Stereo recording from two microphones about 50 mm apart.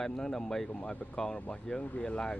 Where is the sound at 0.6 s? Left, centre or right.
Left.